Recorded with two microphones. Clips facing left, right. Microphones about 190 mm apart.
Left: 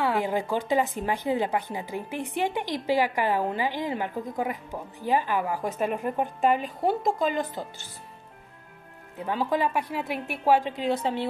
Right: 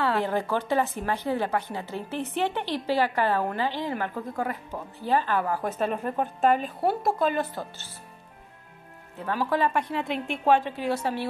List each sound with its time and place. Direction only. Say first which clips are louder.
0.0 s speech: even; 15° left (ahead or behind)
9.2 s speech: even; 15° left (ahead or behind)